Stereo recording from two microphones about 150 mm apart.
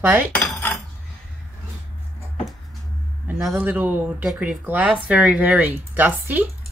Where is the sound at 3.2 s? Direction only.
10° right (ahead or behind).